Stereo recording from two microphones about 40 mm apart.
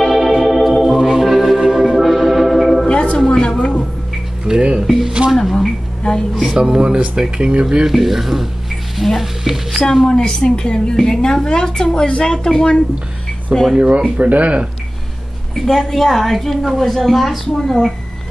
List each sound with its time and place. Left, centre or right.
0.0 s organ: centre
1.6 s music: centre
2.8 s music: left
3.3 s a woman's voice: left
4.5 s speech: right
4.8 s speech: centre
5.3 s a woman's voice: centre
6.0 s a woman's voice: left
6.4 s speech: centre
7.8 s speech: centre
9.7 s a woman's voice: centre
13.7 s speech: right
15.5 s a woman's voice: centre